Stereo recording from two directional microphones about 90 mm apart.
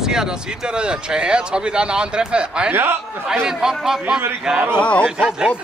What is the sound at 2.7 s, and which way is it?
Speech, 25° right (ahead or behind).